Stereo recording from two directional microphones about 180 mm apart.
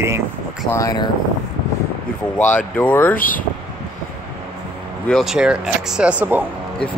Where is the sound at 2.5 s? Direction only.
10° left (ahead or behind).